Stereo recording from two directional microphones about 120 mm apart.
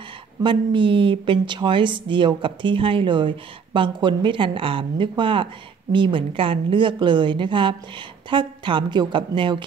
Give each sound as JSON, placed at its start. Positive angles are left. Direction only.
{"t": 0.4, "sound": "a woman's voice", "side_deg": -45}